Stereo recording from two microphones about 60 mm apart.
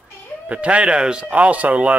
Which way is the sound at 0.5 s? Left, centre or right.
Right.